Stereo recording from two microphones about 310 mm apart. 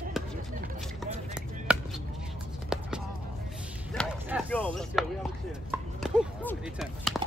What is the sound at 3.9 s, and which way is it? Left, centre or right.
Chop, centre.